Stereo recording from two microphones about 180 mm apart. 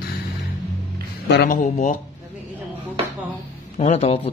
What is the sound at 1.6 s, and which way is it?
Speech, 45° left (ahead or behind).